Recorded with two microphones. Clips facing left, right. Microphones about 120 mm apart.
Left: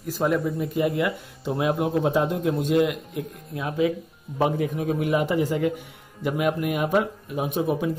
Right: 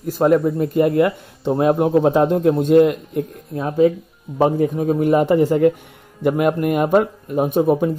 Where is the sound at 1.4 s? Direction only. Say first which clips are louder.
Right 8 dB; 35° right (ahead or behind).